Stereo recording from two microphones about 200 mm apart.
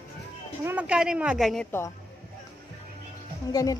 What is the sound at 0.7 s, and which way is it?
Speech, 5° right (ahead or behind).